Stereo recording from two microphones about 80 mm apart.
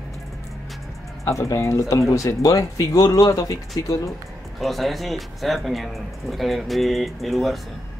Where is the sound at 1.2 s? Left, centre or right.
Left.